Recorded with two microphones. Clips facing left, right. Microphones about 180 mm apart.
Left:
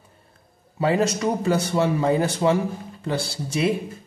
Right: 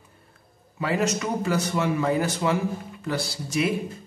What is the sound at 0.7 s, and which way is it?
Speech, 30° left (ahead or behind).